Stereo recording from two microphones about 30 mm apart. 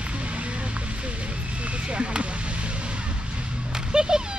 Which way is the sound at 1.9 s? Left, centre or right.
Right.